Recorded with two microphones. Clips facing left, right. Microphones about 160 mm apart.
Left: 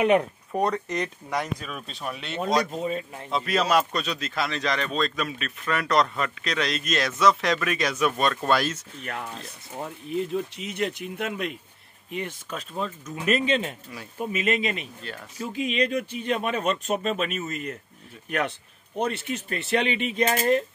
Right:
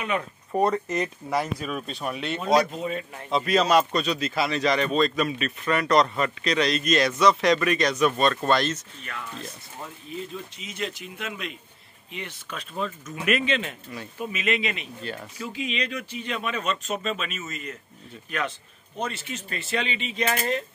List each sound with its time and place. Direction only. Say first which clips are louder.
0.0 s speech: left 8 dB; 65° left (ahead or behind)
0.5 s speech: right 4 dB; 5° right (ahead or behind)
9.0 s speech: left 4 dB; 50° left (ahead or behind)
10.0 s speech: left 9 dB; 65° left (ahead or behind); by 12.6 s 45° left (ahead or behind)
13.1 s speech: left 2 dB; 30° left (ahead or behind)
15.1 s speech: right 6 dB; centre (ahead or behind)
15.4 s speech: left 5 dB; 50° left (ahead or behind)
18.9 s speech: left 4 dB; 60° left (ahead or behind)
20.2 s speech: left 4 dB; 40° left (ahead or behind)